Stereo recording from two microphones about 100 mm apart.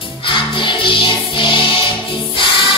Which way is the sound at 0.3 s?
55° left (ahead or behind).